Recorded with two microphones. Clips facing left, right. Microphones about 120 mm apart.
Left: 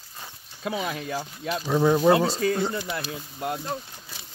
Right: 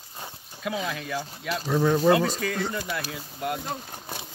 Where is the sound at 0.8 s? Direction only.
30° left (ahead or behind).